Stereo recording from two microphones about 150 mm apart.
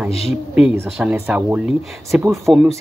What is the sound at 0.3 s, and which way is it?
Speech, 5° right (ahead or behind).